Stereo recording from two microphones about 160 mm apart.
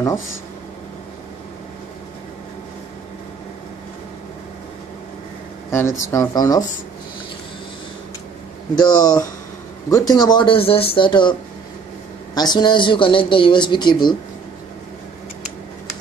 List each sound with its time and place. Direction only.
5.7 s speech: 15° left (ahead or behind)
8.7 s speech: 25° left (ahead or behind)
12.4 s speech: 25° left (ahead or behind)